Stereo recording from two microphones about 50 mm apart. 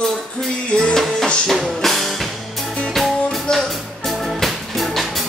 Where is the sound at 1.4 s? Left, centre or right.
Centre.